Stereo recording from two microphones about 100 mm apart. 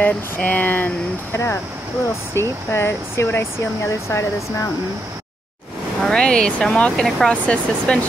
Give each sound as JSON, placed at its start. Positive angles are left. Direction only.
{"t": 0.0, "sound": "speech", "side_deg": 15}
{"t": 6.0, "sound": "speech", "side_deg": 5}